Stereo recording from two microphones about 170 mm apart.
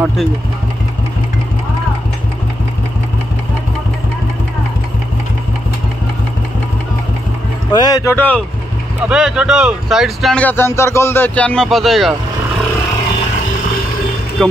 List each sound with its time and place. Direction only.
0.0 s speech: centre (ahead or behind)
7.7 s speech: 25° left (ahead or behind)
9.0 s speech: 5° right (ahead or behind)
14.4 s speech: 5° left (ahead or behind)